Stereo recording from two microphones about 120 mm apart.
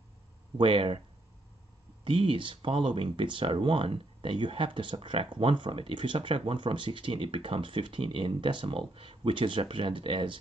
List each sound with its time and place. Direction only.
0.6 s speech: 45° right (ahead or behind)
2.0 s speech: 45° right (ahead or behind)